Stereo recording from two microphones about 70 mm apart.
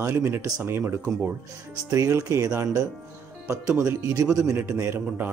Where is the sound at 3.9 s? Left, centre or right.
Right.